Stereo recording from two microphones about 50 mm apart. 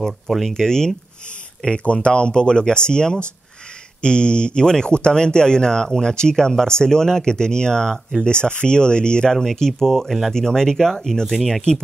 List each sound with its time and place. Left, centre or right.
0.0 s speech: centre
0.7 s speech: centre
9.3 s speech: centre